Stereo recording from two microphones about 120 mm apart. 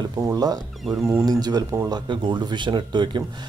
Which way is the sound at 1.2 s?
30° right (ahead or behind).